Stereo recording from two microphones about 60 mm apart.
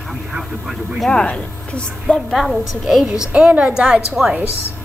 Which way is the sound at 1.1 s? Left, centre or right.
Centre.